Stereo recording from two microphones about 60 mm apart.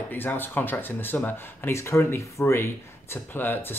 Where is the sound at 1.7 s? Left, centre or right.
Left.